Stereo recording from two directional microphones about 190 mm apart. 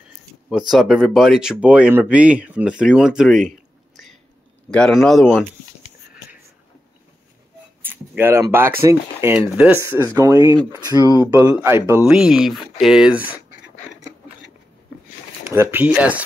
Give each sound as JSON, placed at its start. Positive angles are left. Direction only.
{"t": 0.5, "sound": "speech", "side_deg": 0}
{"t": 7.8, "sound": "speech", "side_deg": -10}
{"t": 12.0, "sound": "speech", "side_deg": -5}
{"t": 15.5, "sound": "speech", "side_deg": -10}